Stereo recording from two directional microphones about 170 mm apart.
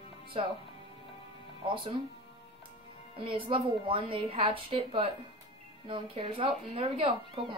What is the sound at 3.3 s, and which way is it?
A woman's voice, 30° right (ahead or behind).